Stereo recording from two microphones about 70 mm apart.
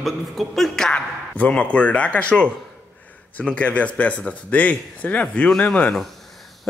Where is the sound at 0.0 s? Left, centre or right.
Centre.